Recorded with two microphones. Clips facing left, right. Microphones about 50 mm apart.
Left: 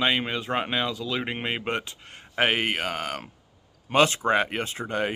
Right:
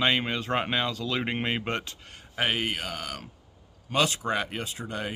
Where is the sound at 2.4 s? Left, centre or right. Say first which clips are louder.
Left 4 dB; left.